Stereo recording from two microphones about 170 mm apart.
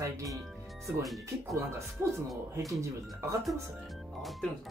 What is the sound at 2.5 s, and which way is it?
Speech, 20° right (ahead or behind).